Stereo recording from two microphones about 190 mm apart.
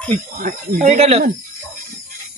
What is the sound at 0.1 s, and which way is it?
Speech, 40° right (ahead or behind).